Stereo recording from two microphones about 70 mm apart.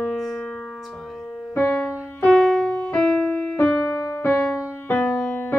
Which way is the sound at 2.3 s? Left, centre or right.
Centre.